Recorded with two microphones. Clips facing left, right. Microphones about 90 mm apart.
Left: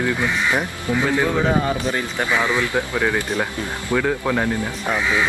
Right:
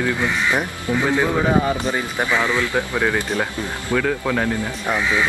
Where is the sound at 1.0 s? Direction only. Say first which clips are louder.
Right 1 dB; 15° right (ahead or behind).